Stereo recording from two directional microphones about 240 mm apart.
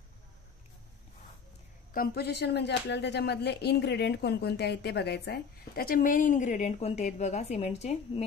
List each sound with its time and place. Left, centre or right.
2.0 s speech: left